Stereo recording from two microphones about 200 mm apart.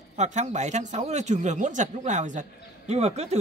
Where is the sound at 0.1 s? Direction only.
35° right (ahead or behind).